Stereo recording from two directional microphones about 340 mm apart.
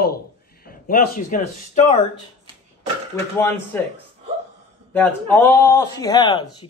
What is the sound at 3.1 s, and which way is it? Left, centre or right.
Speech, centre.